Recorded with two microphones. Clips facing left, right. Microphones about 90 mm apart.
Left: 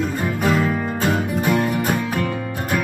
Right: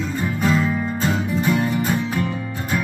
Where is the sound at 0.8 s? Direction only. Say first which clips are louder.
Left 1 dB; 55° left (ahead or behind).